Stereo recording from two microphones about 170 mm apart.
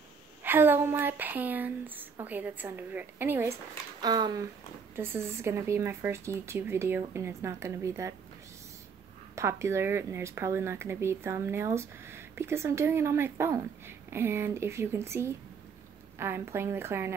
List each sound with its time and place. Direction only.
0.4 s speech: 10° right (ahead or behind)
4.0 s speech: 25° right (ahead or behind)
9.3 s speech: 15° right (ahead or behind)